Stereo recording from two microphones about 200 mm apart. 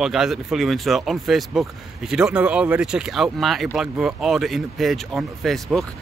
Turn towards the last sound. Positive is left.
turn(degrees=0)  # may be behind; listen again after turning